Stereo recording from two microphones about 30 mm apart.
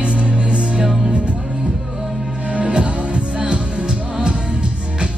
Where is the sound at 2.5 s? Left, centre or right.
Right.